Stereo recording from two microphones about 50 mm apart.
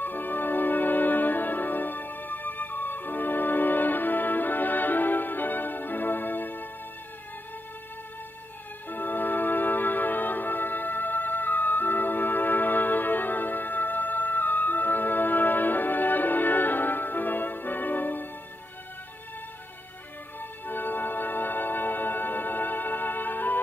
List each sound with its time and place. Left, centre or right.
0.0 s music: left
8.8 s music: left
20.3 s music: left